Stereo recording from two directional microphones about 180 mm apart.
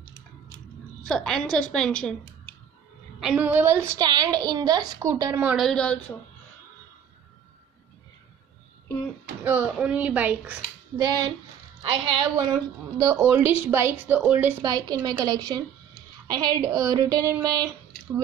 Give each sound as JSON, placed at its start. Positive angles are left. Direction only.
{"t": 1.0, "sound": "a woman's voice", "side_deg": 5}
{"t": 3.2, "sound": "a woman's voice", "side_deg": -5}
{"t": 5.7, "sound": "a woman's voice", "side_deg": 5}
{"t": 9.4, "sound": "a woman's voice", "side_deg": -10}
{"t": 11.0, "sound": "a woman's voice", "side_deg": -20}
{"t": 13.0, "sound": "a woman's voice", "side_deg": -15}